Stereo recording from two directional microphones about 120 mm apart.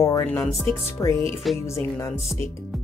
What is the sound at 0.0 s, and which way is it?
Speech, 30° left (ahead or behind).